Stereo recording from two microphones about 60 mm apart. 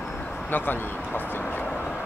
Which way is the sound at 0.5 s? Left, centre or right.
Left.